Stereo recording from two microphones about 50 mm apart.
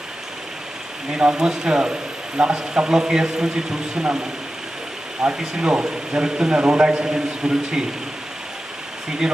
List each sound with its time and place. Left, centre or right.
1.1 s a man's voice: centre
5.4 s a man's voice: centre
9.2 s speech: centre